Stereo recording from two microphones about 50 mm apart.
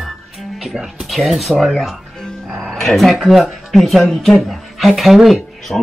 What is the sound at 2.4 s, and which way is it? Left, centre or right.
Music, centre.